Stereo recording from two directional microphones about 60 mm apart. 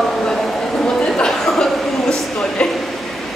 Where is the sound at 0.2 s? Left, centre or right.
Centre.